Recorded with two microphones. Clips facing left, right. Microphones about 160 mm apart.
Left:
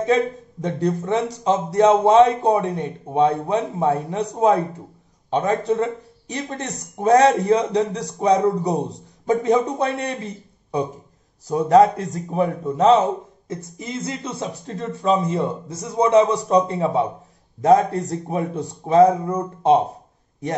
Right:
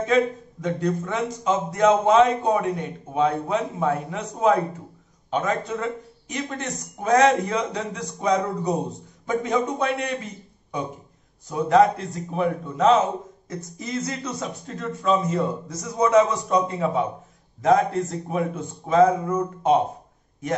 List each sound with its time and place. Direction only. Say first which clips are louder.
0.0 s speech: left 2 dB; 35° left (ahead or behind)
11.4 s speech: left 3 dB; 35° left (ahead or behind)